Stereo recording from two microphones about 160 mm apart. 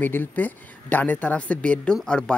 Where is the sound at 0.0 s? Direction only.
10° left (ahead or behind).